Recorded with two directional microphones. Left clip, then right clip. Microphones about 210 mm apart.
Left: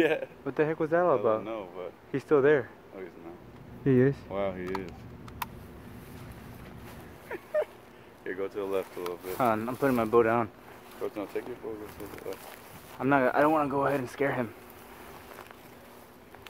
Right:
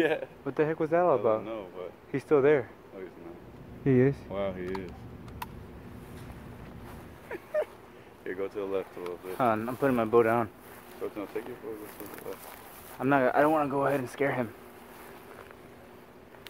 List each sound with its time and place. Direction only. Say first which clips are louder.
0.0 s speech: left 1 dB; 20° left (ahead or behind)
0.5 s speech: even; centre (ahead or behind)
1.4 s speech: left 1 dB; 25° left (ahead or behind)
2.1 s speech: even; centre (ahead or behind)
3.8 s speech: even; centre (ahead or behind)
4.3 s speech: left 1 dB; 25° left (ahead or behind)
5.4 s vehicle: left 4 dB; 25° left (ahead or behind)
7.2 s dog: left 1 dB; 10° left (ahead or behind)
8.2 s speech: even; 10° left (ahead or behind)
9.0 s speech: left 2 dB; 40° left (ahead or behind)
9.4 s speech: even; centre (ahead or behind)
11.0 s speech: left 1 dB; 40° left (ahead or behind)
12.4 s speech: even; centre (ahead or behind)